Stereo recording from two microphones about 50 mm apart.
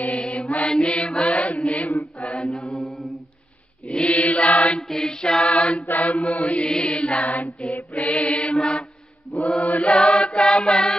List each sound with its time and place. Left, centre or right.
0.0 s mantra: left
1.7 s chant: left
3.8 s chant: centre
4.1 s mantra: left
4.8 s choir: centre
5.5 s a capella: left
5.9 s mantra: left
10.4 s choir: centre